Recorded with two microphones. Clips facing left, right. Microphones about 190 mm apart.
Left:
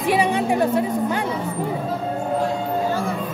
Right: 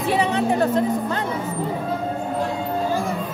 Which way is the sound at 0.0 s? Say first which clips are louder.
Left 1 dB; 10° left (ahead or behind).